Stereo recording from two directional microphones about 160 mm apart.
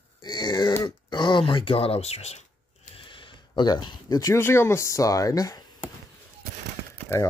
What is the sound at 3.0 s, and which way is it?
Speech, 30° left (ahead or behind).